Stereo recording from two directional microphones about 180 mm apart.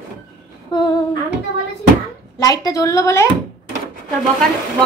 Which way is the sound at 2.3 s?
20° left (ahead or behind).